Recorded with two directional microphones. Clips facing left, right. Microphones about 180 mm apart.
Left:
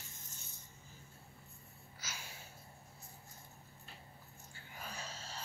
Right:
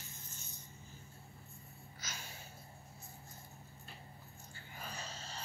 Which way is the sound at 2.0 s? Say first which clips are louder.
Even; 5° left (ahead or behind).